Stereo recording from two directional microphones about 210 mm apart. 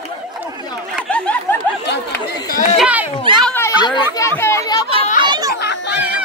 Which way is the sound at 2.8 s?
5° right (ahead or behind).